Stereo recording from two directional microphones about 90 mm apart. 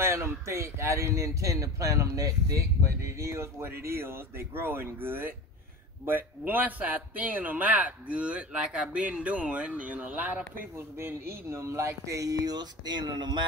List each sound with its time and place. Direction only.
0.0 s a man's voice: 30° right (ahead or behind); by 13.5 s 60° right (ahead or behind)